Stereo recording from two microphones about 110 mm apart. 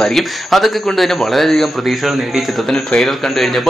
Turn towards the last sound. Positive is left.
turn(degrees=0)  # may be behind; listen again after turning